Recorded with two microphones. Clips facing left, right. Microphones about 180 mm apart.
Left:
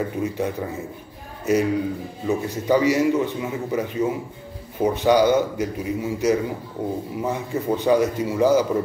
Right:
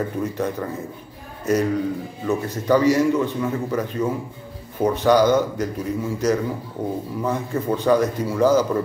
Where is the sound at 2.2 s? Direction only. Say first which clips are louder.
Even; 15° left (ahead or behind).